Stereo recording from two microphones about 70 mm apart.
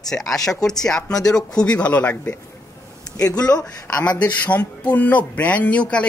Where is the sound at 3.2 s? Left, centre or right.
Left.